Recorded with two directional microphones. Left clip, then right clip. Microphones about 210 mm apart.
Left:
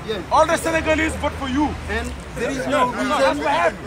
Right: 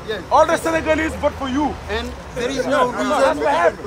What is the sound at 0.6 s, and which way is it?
Speech, 50° right (ahead or behind).